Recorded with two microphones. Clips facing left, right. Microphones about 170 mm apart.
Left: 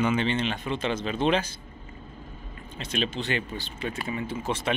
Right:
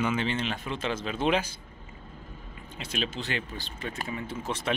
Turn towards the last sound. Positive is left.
turn(degrees=0)  # may be behind; listen again after turning